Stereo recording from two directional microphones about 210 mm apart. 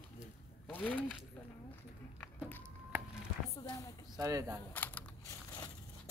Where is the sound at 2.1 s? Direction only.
10° left (ahead or behind).